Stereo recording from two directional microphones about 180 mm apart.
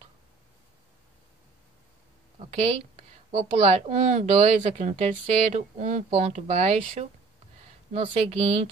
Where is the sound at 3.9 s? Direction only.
40° right (ahead or behind).